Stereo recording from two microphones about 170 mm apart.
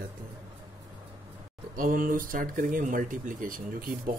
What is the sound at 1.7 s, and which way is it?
Speech, 55° right (ahead or behind).